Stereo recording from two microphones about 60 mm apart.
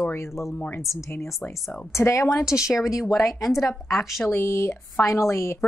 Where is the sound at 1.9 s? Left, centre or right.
Left.